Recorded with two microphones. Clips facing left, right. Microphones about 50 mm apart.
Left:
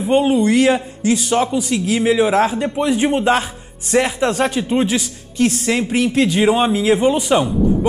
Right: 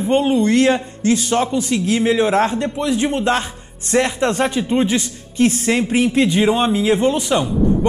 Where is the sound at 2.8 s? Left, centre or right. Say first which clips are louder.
Left 3 dB; left; by 5.1 s centre.